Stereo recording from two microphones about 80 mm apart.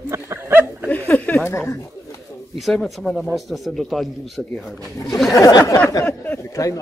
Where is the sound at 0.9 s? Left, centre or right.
Left.